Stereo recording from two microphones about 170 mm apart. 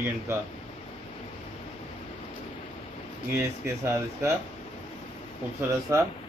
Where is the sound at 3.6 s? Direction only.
15° right (ahead or behind).